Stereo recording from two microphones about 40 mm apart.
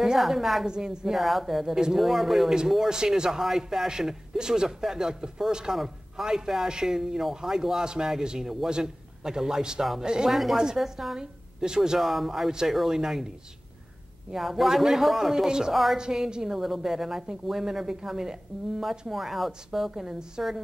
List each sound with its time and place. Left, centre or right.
0.0 s a woman's voice: centre
0.7 s a woman's voice: centre
1.1 s speech: centre
2.9 s a woman's voice: centre
7.8 s a woman's voice: right
10.3 s speech: centre
11.1 s speech: centre
12.0 s a woman's voice: centre
14.3 s a woman's voice: centre
15.7 s speech: centre
16.0 s a woman's voice: centre
16.4 s a woman's voice: centre